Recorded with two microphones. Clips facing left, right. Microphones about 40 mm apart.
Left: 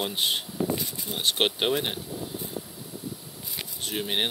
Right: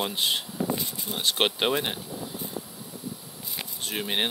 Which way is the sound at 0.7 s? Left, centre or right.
Right.